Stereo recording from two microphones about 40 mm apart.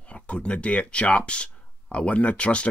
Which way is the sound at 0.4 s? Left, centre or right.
Left.